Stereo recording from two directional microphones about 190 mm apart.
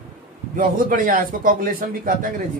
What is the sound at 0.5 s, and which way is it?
Speech, 45° right (ahead or behind).